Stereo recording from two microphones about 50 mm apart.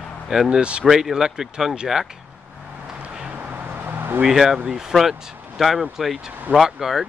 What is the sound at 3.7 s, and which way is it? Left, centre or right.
Vehicle, right.